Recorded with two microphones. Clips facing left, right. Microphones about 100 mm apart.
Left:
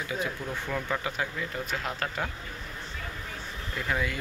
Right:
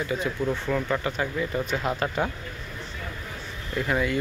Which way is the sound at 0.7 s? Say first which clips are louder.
Right 5 dB; 5° right (ahead or behind).